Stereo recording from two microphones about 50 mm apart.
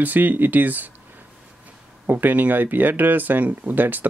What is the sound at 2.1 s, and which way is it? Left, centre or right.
Speech, right.